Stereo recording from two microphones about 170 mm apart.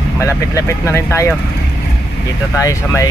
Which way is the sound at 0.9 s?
15° left (ahead or behind).